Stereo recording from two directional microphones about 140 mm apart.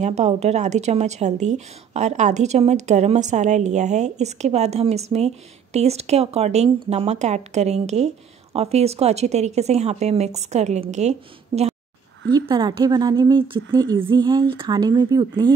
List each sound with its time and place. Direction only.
0.0 s a woman's voice: 50° right (ahead or behind)
12.4 s a woman's voice: 30° right (ahead or behind)